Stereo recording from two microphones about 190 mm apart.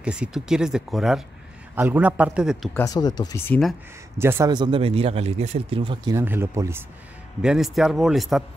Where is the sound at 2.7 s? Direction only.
20° left (ahead or behind).